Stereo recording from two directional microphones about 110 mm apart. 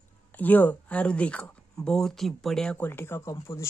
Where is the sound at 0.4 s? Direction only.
15° left (ahead or behind).